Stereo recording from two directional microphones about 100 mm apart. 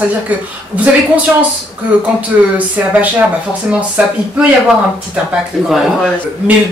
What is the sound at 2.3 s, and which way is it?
Speech, 20° right (ahead or behind).